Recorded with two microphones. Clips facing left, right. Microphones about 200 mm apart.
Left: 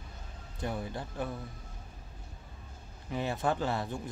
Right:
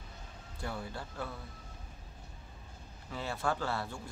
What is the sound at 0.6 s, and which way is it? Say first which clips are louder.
Speech: left 4 dB; 20° left (ahead or behind).